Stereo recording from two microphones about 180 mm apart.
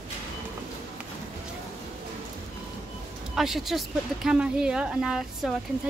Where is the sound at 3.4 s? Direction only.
Centre (ahead or behind).